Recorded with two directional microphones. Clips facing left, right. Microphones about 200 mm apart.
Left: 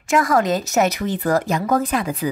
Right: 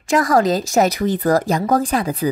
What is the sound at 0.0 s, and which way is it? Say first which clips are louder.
A woman's voice: right 2 dB; 35° right (ahead or behind).